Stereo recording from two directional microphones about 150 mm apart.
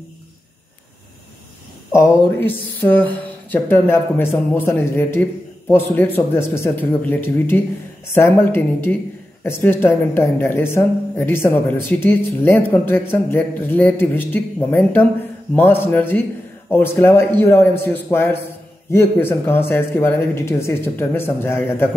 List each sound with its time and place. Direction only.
1.9 s speech: 15° left (ahead or behind)